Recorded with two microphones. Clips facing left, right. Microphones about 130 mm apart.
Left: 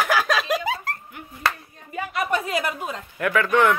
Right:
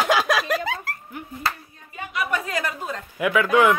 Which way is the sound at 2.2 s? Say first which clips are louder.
Left 1 dB; 25° left (ahead or behind).